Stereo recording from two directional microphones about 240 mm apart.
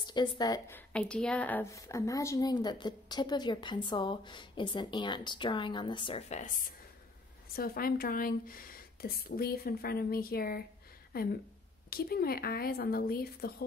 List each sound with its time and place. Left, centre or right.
0.0 s a woman's voice: centre; by 13.7 s left